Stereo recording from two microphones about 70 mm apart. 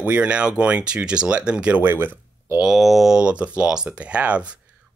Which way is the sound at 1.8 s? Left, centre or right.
Right.